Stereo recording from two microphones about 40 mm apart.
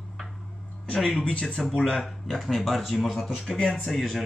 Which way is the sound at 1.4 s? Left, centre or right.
Centre.